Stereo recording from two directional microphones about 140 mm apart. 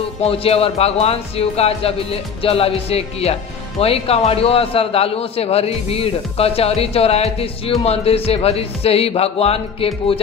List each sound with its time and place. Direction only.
0.2 s a man's voice: 45° left (ahead or behind)